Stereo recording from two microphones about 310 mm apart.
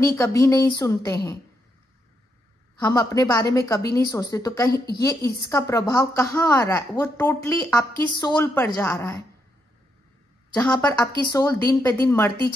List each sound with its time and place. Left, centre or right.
0.0 s a woman's voice: centre
2.8 s a woman's voice: centre
4.7 s a woman's voice: left
5.0 s a woman's voice: centre
10.5 s a woman's voice: centre